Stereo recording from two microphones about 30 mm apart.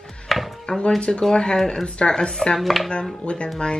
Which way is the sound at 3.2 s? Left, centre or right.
Left.